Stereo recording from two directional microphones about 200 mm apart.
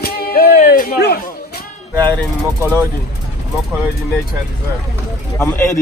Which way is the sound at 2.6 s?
10° right (ahead or behind).